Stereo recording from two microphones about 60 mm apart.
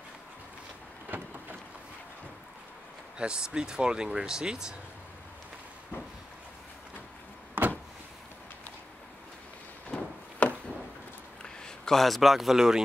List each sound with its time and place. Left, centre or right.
1.1 s vehicle: right
3.2 s speech: centre
9.8 s a sound: left
11.4 s speech: centre